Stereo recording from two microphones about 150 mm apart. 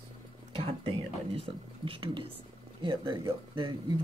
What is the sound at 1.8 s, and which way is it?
Speech, 35° right (ahead or behind).